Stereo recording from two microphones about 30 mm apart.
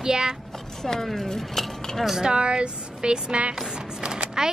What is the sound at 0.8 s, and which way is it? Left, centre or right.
Speech, centre.